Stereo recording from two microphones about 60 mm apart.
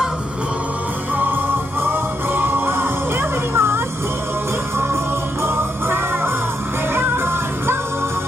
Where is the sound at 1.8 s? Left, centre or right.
Right.